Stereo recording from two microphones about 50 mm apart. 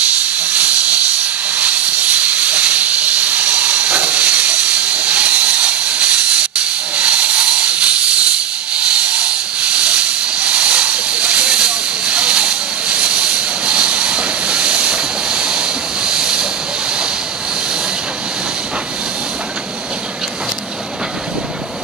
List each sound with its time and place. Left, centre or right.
0.4 s hiss: right; by 16.4 s centre